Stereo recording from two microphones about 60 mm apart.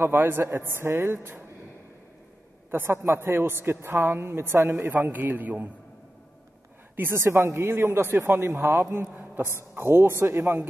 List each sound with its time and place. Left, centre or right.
0.0 s a man's voice: right
2.7 s a man's voice: right
4.9 s a man's voice: right
7.0 s a man's voice: right
8.6 s speech: right
9.1 s a sound: right
9.6 s speech: right